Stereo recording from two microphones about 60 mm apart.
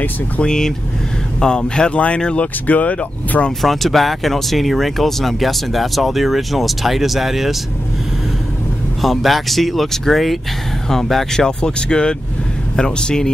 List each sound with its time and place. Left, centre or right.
0.4 s speech: centre
3.6 s speech: centre
9.0 s speech: centre